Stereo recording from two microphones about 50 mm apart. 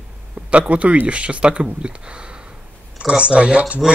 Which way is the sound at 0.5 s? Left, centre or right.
Right.